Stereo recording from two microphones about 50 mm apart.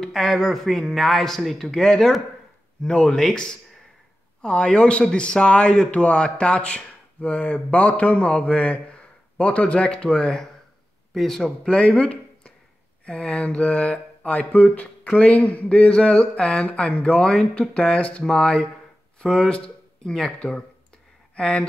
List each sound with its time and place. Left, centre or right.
0.0 s speech: centre
2.9 s speech: left
3.2 s speech: centre
11.7 s speech: left
13.0 s mantra: left
14.5 s speech: left
18.2 s speech: centre